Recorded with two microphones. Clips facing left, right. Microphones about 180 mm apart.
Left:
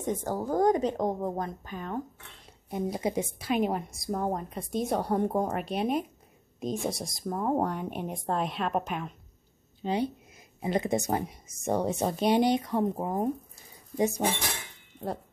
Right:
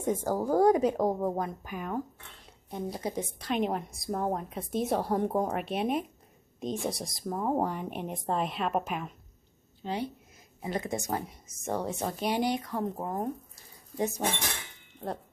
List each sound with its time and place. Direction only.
0.0 s a woman's voice: 10° right (ahead or behind)
2.7 s a woman's voice: 10° left (ahead or behind)
9.8 s a woman's voice: 20° left (ahead or behind)